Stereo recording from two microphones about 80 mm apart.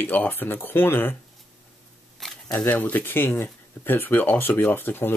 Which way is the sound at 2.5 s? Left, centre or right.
Left.